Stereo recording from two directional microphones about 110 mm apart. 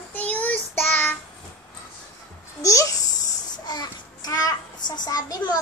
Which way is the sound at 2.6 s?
30° left (ahead or behind).